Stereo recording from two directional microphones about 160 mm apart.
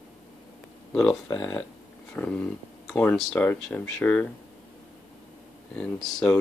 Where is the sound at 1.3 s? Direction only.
15° left (ahead or behind).